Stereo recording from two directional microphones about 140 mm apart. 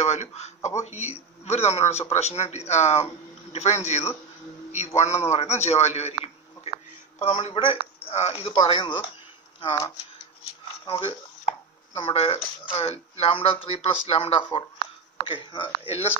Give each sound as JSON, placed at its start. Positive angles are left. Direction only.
{"t": 0.0, "sound": "speech", "side_deg": 55}
{"t": 0.6, "sound": "speech", "side_deg": 20}
{"t": 0.8, "sound": "a man's voice", "side_deg": 55}
{"t": 10.9, "sound": "a sound", "side_deg": 40}
{"t": 12.7, "sound": "speech", "side_deg": 45}